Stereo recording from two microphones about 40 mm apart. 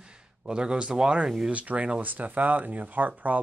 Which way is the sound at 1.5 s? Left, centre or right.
Right.